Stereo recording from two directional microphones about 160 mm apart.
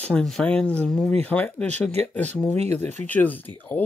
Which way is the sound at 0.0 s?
5° left (ahead or behind).